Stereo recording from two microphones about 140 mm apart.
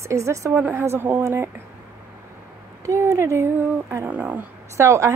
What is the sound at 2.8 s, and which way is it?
Speech, 20° right (ahead or behind).